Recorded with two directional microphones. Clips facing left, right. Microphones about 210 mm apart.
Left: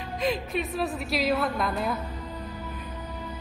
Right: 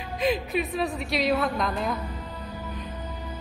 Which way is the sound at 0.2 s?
Centre (ahead or behind).